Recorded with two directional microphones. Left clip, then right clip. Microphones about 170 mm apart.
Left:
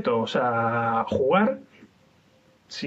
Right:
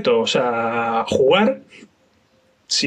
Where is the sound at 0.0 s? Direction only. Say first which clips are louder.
Right 6 dB; 10° right (ahead or behind).